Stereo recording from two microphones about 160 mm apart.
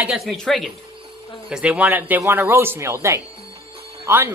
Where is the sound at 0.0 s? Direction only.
5° right (ahead or behind).